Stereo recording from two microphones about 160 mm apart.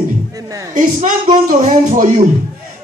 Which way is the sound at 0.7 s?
55° right (ahead or behind).